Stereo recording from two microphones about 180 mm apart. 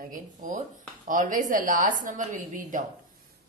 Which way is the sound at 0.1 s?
45° right (ahead or behind).